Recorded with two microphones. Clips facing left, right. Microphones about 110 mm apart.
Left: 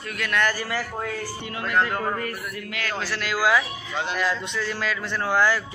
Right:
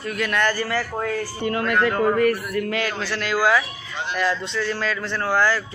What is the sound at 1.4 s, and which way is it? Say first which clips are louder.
Speech: right 4 dB; 55° right (ahead or behind).